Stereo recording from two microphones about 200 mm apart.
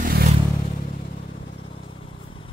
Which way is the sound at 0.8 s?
45° left (ahead or behind).